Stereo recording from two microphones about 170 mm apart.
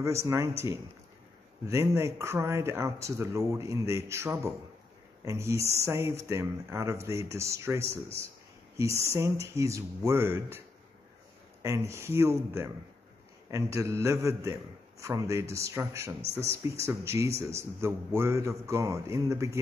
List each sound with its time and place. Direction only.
0.0 s a man's voice: 15° right (ahead or behind)
1.7 s a man's voice: 15° right (ahead or behind)
11.6 s a man's voice: 15° right (ahead or behind)